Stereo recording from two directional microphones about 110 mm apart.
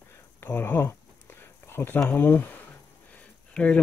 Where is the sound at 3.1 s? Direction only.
10° left (ahead or behind).